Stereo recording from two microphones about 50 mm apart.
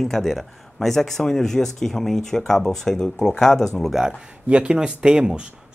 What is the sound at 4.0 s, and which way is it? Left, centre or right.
Speech, centre.